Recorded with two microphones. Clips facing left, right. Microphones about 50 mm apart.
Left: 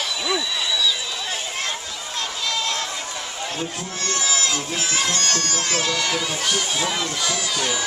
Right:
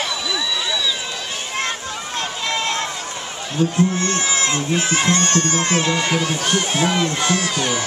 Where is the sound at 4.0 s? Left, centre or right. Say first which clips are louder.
Right 4 dB; right.